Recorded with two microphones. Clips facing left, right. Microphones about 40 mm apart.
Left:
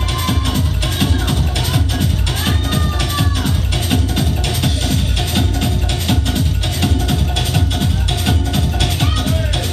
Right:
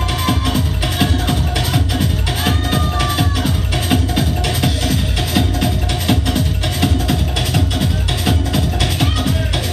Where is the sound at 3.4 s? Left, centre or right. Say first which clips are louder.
Right 1 dB; right.